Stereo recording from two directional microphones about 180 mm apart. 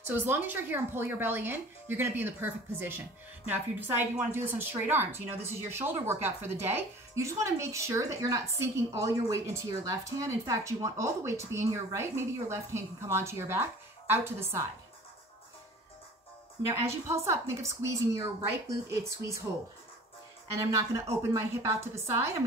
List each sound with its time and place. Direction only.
0.0 s a woman's voice: 10° right (ahead or behind)
16.6 s a woman's voice: 15° right (ahead or behind)
20.5 s a woman's voice: 15° right (ahead or behind)